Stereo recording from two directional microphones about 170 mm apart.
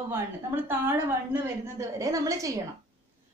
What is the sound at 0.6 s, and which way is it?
A woman's voice, 15° right (ahead or behind).